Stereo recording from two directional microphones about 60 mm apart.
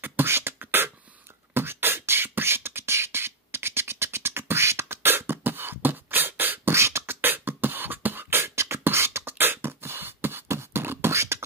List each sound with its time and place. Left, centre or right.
0.0 s beatboxing: right
6.7 s beatboxing: right